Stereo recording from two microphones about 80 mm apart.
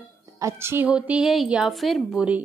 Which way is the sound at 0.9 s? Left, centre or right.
Centre.